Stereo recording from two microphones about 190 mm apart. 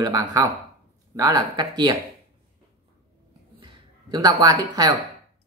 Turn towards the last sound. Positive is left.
turn(degrees=-20)  # may be behind; listen again after turning